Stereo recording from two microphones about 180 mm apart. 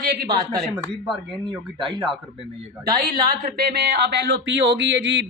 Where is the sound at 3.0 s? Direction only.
55° right (ahead or behind).